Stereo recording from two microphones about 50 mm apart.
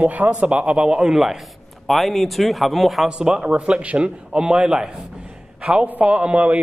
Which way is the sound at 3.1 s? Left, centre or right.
Centre.